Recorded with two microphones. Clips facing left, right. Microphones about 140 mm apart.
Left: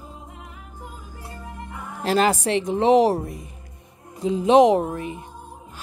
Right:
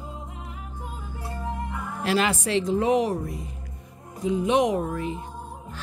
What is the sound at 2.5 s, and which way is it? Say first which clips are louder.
Speech: left 4 dB; 20° left (ahead or behind).